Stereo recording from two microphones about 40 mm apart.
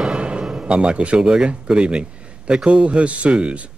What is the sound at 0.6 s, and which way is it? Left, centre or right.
A man's voice, right.